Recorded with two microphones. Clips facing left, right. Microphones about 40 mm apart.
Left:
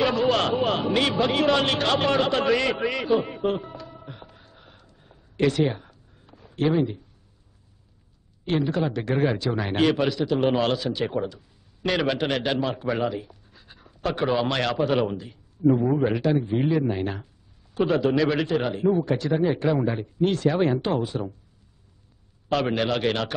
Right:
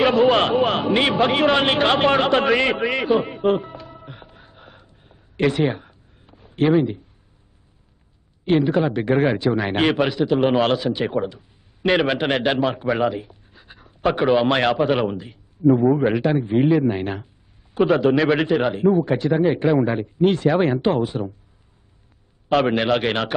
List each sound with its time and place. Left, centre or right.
0.0 s a man's voice: right
5.4 s a sound: right
8.5 s a man's voice: right
22.5 s speech: right